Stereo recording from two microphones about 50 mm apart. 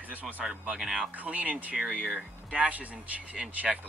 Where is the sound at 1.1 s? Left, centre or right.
Right.